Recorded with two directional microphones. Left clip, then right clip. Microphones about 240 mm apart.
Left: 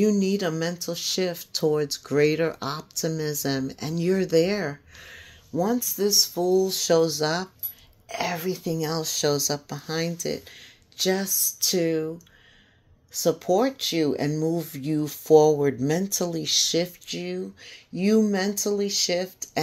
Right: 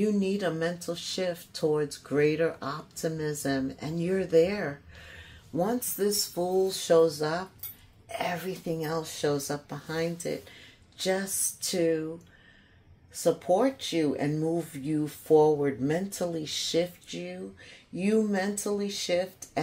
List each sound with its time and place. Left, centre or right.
0.0 s speech: left
13.1 s speech: left